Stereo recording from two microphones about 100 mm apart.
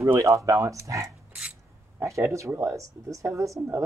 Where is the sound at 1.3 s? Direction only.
10° right (ahead or behind).